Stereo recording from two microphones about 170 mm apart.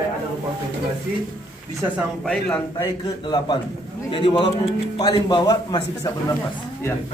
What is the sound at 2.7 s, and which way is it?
A man's voice, 25° left (ahead or behind).